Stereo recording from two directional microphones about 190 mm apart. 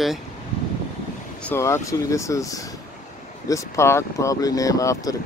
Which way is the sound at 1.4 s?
15° left (ahead or behind).